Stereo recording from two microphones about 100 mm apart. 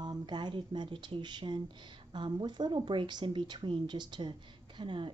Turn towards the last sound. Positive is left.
turn(degrees=-55)  # may be behind; listen again after turning